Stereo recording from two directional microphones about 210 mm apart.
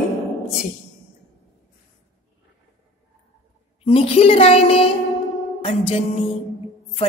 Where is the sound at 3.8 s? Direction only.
25° left (ahead or behind).